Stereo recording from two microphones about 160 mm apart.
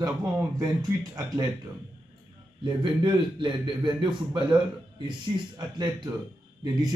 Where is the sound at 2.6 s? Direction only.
30° right (ahead or behind).